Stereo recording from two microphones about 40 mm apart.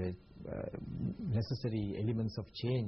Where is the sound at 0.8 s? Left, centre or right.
Centre.